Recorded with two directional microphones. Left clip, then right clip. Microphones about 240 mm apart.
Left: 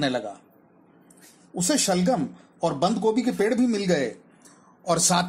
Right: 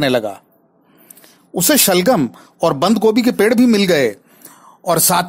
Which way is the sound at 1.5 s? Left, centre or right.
Right.